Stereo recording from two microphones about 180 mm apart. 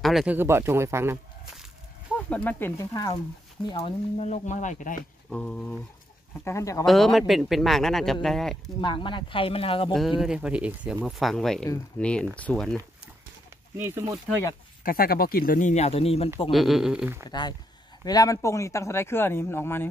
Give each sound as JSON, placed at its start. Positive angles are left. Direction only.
{"t": 0.0, "sound": "a man's voice", "side_deg": 0}
{"t": 2.2, "sound": "speech", "side_deg": 10}
{"t": 3.8, "sound": "speech", "side_deg": 40}
{"t": 5.3, "sound": "a man's voice", "side_deg": 5}
{"t": 6.4, "sound": "speech", "side_deg": 15}
{"t": 6.9, "sound": "a man's voice", "side_deg": 0}
{"t": 8.8, "sound": "speech", "side_deg": 25}
{"t": 10.2, "sound": "a man's voice", "side_deg": -5}
{"t": 13.7, "sound": "a man's voice", "side_deg": -15}
{"t": 14.8, "sound": "speech", "side_deg": 55}
{"t": 15.7, "sound": "speech", "side_deg": 35}
{"t": 16.4, "sound": "a man's voice", "side_deg": 0}
{"t": 17.3, "sound": "speech", "side_deg": 25}